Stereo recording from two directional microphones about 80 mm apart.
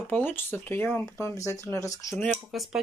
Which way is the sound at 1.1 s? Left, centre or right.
Left.